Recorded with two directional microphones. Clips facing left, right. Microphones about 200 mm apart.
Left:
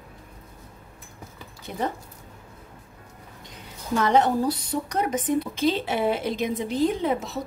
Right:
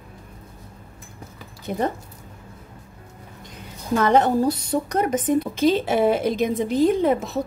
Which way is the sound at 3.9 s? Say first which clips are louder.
Right 3 dB; 50° right (ahead or behind).